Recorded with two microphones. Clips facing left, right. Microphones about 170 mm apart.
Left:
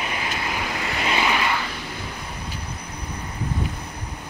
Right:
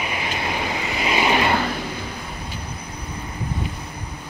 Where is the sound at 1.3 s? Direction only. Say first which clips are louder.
Right 5 dB; 40° right (ahead or behind).